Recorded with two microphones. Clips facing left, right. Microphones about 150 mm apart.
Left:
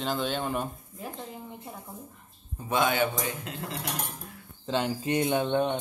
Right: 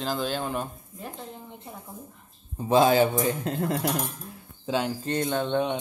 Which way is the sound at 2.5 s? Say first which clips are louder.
Right 7 dB; 30° right (ahead or behind).